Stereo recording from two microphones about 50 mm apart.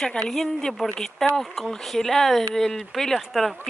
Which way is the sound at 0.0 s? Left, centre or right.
Centre.